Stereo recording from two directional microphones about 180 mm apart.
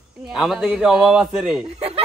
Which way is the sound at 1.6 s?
30° right (ahead or behind).